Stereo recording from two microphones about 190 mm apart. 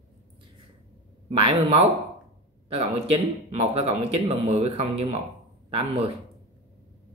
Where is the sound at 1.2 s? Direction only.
30° right (ahead or behind).